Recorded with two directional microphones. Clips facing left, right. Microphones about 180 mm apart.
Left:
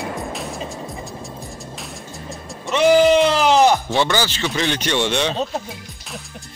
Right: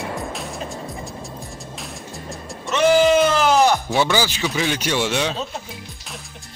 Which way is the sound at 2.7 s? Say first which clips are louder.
Left 2 dB; centre (ahead or behind).